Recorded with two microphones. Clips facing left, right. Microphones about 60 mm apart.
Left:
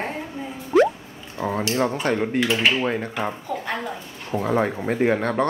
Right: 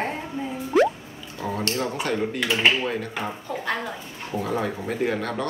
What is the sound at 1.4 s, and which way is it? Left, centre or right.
Speech, left.